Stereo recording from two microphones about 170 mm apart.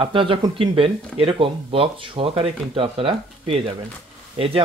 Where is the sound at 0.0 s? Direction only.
30° right (ahead or behind).